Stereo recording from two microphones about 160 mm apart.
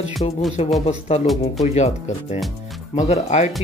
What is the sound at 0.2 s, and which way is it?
Speech, 35° left (ahead or behind).